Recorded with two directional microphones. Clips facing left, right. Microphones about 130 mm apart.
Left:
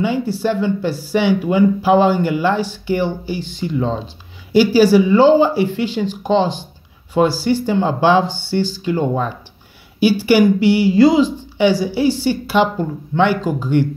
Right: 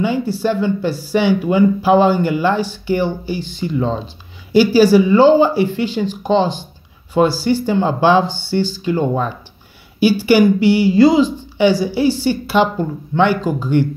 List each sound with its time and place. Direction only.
0.0 s speech: 35° right (ahead or behind)